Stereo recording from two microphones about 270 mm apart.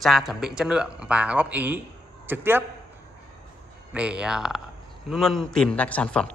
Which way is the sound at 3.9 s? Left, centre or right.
Centre.